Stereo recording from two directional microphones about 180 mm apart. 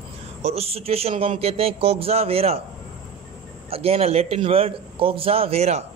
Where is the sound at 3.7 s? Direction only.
35° right (ahead or behind).